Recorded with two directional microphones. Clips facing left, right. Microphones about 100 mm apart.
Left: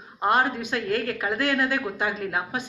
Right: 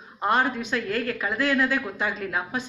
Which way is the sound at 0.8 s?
35° left (ahead or behind).